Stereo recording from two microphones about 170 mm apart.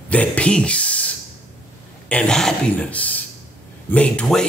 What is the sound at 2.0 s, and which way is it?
Speech, 5° left (ahead or behind).